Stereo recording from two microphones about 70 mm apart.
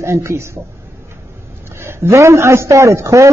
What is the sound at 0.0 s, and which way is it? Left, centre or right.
Speech, right.